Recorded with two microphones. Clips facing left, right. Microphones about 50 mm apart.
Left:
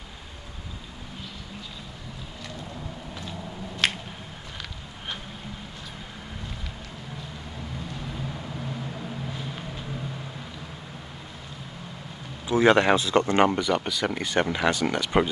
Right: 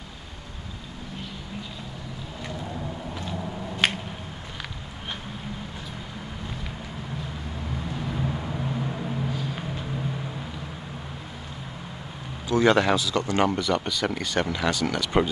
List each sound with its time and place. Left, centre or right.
3.2 s vehicle: centre
8.1 s a sound: centre
9.3 s vehicle: centre
12.4 s speech: centre
12.9 s speech: left
13.5 s speech: centre
14.2 s speech: left